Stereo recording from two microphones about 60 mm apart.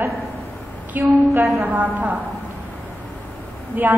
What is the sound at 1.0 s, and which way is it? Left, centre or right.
A woman's voice, right.